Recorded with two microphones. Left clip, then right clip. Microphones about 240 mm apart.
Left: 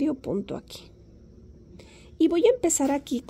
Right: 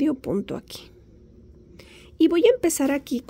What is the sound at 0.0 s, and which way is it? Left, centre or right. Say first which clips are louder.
A woman's voice: right 3 dB; centre.